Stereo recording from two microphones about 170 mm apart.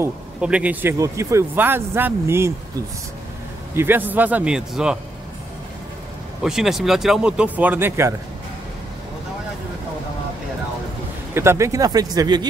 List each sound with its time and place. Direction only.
0.0 s speech: 5° right (ahead or behind)
3.7 s speech: 10° right (ahead or behind)
6.4 s speech: centre (ahead or behind)
11.3 s speech: 15° right (ahead or behind)